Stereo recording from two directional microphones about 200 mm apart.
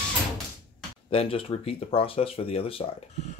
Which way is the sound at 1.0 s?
30° left (ahead or behind).